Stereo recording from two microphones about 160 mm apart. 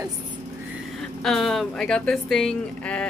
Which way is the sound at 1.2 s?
Centre (ahead or behind).